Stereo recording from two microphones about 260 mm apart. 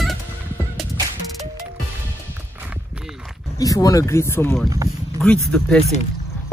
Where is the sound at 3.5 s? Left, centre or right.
Centre.